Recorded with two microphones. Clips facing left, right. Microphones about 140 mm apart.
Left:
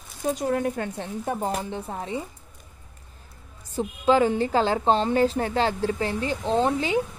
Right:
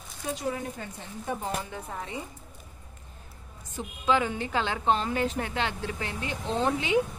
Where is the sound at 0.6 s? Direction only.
65° left (ahead or behind).